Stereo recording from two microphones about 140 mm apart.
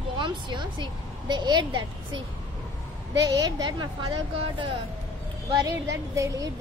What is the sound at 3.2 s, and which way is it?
Speech, 30° right (ahead or behind).